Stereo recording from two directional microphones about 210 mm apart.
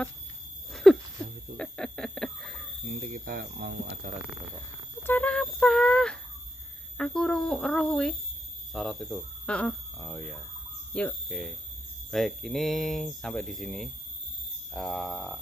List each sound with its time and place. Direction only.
0.8 s speech: centre (ahead or behind)
1.6 s a sound: 5° left (ahead or behind)
2.9 s speech: 40° right (ahead or behind)
5.0 s speech: 10° left (ahead or behind)